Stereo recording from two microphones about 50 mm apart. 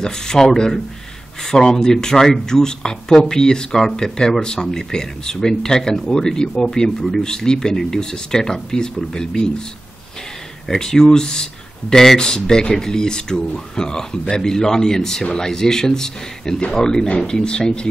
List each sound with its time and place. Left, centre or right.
0.0 s speech: centre
10.7 s speech: centre